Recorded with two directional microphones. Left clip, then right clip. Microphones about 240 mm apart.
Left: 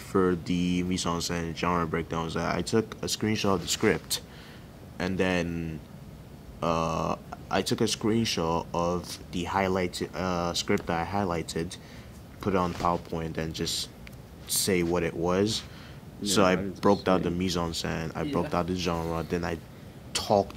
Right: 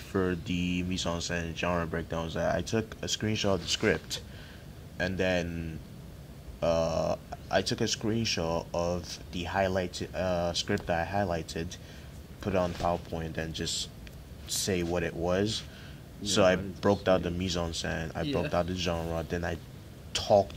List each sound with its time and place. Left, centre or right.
0.1 s speech: right
0.6 s speech: centre
0.8 s speech: right
6.6 s speech: right